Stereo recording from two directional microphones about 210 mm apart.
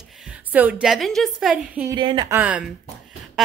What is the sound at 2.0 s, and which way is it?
Speech, 25° right (ahead or behind).